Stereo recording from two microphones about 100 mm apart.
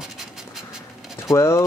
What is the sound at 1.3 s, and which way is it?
Speech, 30° left (ahead or behind).